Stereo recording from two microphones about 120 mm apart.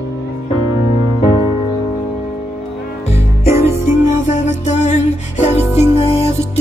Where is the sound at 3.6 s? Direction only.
75° left (ahead or behind).